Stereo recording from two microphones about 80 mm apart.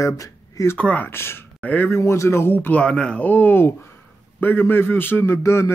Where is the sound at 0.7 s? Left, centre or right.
Centre.